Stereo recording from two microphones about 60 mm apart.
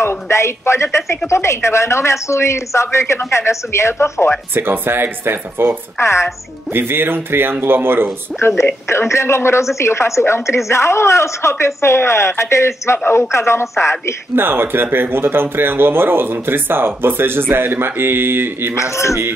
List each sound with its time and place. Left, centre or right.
0.0 s speech: left
4.6 s speech: right
5.9 s speech: left
6.7 s speech: right
8.4 s speech: left
14.3 s speech: right
18.8 s speech: left